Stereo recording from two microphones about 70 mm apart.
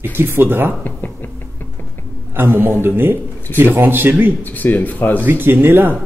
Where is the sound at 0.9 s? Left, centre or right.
Left.